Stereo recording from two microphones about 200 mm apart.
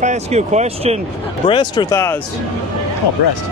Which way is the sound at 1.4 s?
20° left (ahead or behind).